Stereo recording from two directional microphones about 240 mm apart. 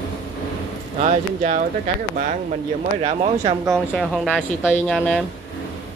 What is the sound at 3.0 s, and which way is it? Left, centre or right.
Speech, right.